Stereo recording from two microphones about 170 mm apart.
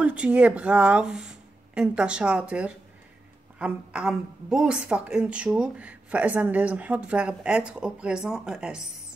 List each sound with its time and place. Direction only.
0.0 s a woman's voice: 5° right (ahead or behind)